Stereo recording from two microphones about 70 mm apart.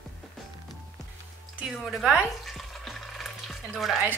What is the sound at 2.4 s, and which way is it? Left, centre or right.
Water, centre.